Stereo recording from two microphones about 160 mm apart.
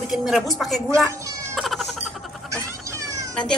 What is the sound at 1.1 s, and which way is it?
Cat, 20° right (ahead or behind).